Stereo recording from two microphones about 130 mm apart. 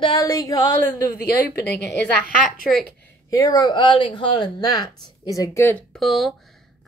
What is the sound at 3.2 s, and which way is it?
Speech, 25° left (ahead or behind).